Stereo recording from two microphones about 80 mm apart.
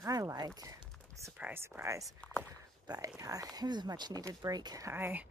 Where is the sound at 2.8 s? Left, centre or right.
Right.